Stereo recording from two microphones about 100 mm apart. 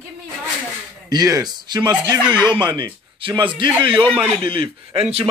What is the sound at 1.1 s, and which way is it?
Speech, 40° right (ahead or behind).